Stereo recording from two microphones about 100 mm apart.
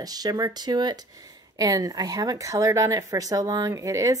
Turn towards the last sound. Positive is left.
turn(degrees=-35)  # may be behind; listen again after turning